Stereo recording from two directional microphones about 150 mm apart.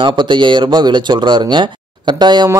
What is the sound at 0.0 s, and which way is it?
Speech, 30° right (ahead or behind).